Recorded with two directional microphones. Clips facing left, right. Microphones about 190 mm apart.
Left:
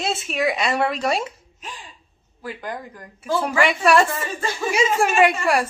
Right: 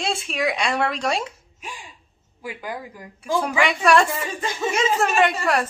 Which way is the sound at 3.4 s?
5° left (ahead or behind).